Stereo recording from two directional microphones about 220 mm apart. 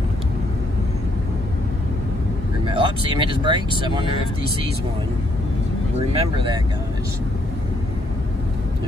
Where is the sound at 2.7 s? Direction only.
20° right (ahead or behind).